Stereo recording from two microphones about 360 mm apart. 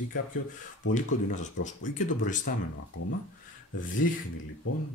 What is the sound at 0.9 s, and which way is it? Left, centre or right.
Speech, centre.